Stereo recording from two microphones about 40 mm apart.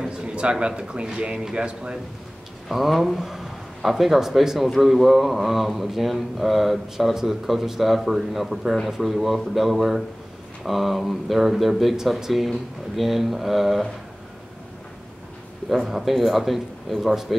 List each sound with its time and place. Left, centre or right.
0.0 s a sound: right
1.3 s a man's voice: centre
2.7 s a man's voice: centre
15.7 s a man's voice: centre